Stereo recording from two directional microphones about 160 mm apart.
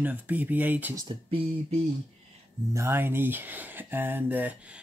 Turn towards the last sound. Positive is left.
turn(degrees=-10)  # may be behind; listen again after turning